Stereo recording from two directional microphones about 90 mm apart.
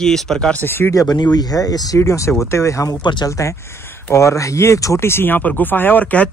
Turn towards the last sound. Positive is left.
turn(degrees=15)  # may be behind; listen again after turning